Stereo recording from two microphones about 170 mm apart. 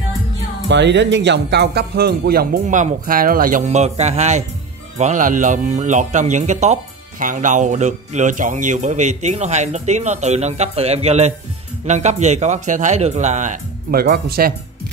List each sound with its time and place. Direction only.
0.7 s speech: 90° right; by 2.6 s 65° right (ahead or behind)
2.6 s speech: 45° right (ahead or behind); by 14.5 s 65° right (ahead or behind)